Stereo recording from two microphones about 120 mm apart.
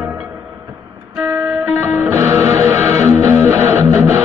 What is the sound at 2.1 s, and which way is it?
Music, 20° right (ahead or behind).